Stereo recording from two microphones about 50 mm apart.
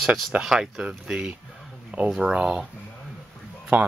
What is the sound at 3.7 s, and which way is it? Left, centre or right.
Speech, right.